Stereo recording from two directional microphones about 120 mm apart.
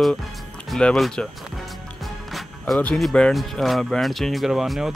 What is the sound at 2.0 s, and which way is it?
Music, centre (ahead or behind).